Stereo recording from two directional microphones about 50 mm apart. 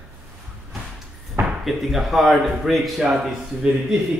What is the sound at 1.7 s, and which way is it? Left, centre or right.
Speech, centre.